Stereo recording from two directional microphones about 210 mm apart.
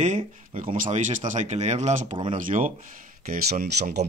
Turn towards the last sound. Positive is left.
turn(degrees=-45)  # may be behind; listen again after turning